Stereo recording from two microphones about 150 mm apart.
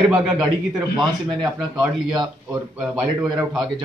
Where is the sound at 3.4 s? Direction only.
30° right (ahead or behind).